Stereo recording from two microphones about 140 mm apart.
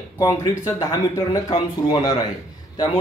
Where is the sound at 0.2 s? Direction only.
25° left (ahead or behind).